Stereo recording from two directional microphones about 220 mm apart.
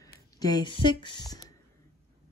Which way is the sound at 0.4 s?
20° left (ahead or behind).